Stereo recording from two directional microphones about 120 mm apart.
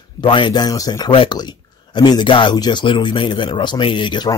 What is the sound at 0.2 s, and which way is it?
Speech, 40° left (ahead or behind).